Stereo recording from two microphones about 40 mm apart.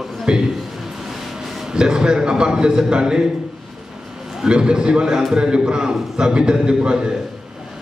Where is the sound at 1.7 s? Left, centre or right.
Centre.